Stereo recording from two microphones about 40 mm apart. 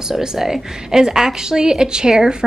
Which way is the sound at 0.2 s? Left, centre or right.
Centre.